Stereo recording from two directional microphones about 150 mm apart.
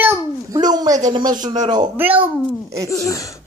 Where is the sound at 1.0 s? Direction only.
25° right (ahead or behind).